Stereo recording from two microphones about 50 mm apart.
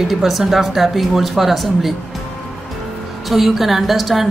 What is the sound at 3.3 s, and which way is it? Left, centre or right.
Speech, centre.